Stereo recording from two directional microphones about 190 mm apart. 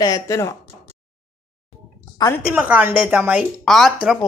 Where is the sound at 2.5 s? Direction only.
10° right (ahead or behind).